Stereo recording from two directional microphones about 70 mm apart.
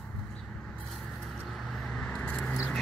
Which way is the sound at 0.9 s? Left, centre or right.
Centre.